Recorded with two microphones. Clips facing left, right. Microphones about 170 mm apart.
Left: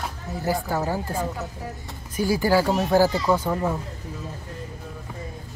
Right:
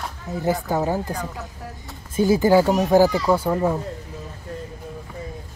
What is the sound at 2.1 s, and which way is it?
A child's voice, 20° right (ahead or behind).